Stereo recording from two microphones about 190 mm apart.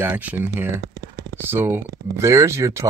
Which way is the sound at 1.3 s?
10° right (ahead or behind).